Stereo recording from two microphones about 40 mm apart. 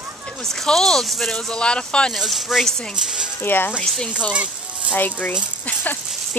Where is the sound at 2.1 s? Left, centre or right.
Centre.